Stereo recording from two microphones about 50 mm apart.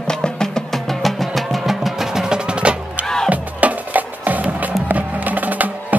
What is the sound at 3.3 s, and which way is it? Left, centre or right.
Music, right.